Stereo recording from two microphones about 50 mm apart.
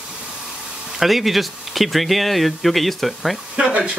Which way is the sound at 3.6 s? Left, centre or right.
Right.